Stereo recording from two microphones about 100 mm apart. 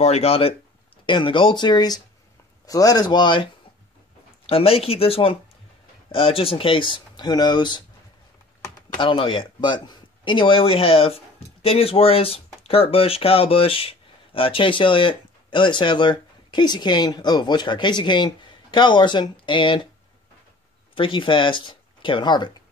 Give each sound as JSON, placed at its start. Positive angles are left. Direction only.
{"t": 0.0, "sound": "speech", "side_deg": 90}
{"t": 1.0, "sound": "speech", "side_deg": 55}
{"t": 4.5, "sound": "speech", "side_deg": 75}
{"t": 8.9, "sound": "speech", "side_deg": 55}
{"t": 20.9, "sound": "speech", "side_deg": 60}